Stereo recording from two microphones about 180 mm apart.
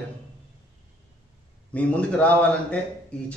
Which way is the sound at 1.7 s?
5° left (ahead or behind).